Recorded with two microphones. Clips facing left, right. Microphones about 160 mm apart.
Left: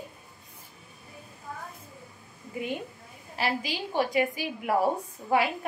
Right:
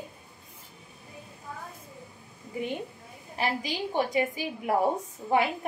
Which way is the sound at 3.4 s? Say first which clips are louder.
Even; 20° right (ahead or behind).